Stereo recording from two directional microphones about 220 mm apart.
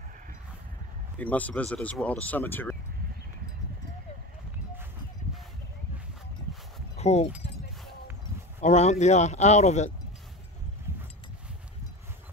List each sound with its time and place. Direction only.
1.1 s speech: 5° left (ahead or behind)
7.0 s speech: 30° left (ahead or behind)
8.5 s speech: 30° left (ahead or behind)